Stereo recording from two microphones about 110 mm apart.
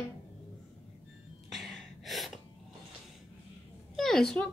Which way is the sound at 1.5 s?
Centre (ahead or behind).